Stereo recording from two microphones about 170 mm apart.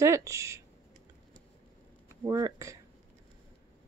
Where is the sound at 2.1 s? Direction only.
20° right (ahead or behind).